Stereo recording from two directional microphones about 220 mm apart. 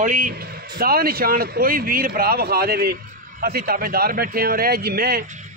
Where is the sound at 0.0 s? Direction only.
35° right (ahead or behind).